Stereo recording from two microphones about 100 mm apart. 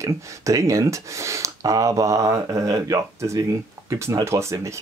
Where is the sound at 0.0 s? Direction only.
30° right (ahead or behind).